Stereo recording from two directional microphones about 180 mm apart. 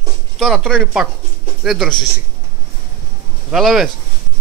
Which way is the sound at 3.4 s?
Centre (ahead or behind).